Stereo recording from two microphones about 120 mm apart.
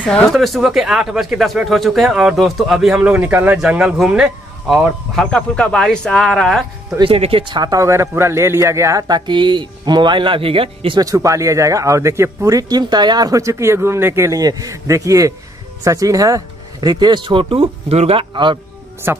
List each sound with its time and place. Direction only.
0.1 s speech: 5° left (ahead or behind)
7.0 s speech: 50° right (ahead or behind)
11.0 s a man's voice: 25° right (ahead or behind)
19.1 s a man's voice: 20° right (ahead or behind)